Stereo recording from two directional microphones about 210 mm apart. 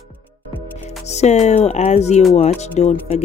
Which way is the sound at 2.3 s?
30° left (ahead or behind).